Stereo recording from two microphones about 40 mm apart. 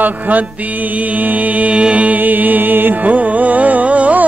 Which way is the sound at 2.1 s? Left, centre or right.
Right.